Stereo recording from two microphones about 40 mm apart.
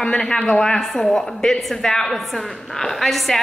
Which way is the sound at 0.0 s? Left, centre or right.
Centre.